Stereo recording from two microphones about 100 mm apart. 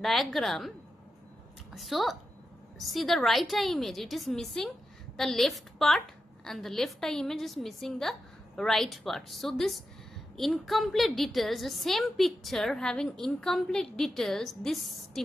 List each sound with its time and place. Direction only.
0.0 s a woman's voice: centre (ahead or behind)
1.8 s a woman's voice: centre (ahead or behind)